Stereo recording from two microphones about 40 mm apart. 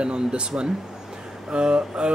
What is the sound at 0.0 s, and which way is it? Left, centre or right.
Speech, right.